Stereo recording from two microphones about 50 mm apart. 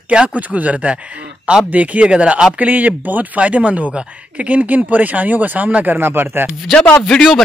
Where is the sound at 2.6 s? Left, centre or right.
Right.